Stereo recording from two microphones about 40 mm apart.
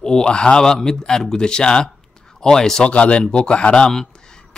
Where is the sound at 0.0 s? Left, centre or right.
Centre.